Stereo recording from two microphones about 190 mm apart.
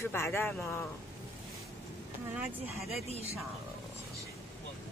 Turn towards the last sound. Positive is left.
turn(degrees=35)  # may be behind; listen again after turning